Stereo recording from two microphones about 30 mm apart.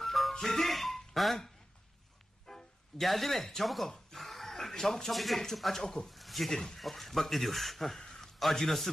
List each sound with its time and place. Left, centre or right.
0.0 s music: centre
0.3 s speech: centre
2.5 s music: centre
3.0 s a man's voice: centre
4.1 s a sound: centre
5.1 s a man's voice: centre
5.8 s speech: centre
6.0 s speech: centre
6.5 s a man's voice: centre